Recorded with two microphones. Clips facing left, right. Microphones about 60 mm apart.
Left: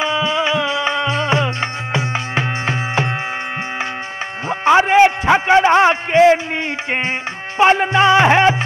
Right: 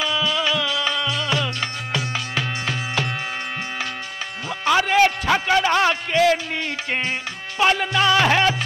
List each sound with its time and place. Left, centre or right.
0.0 s music: left
4.5 s music: left